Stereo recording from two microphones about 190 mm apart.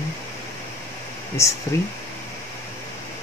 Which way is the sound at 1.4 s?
15° left (ahead or behind).